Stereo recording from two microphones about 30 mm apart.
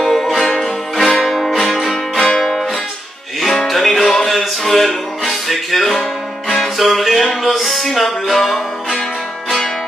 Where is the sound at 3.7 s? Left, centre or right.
Centre.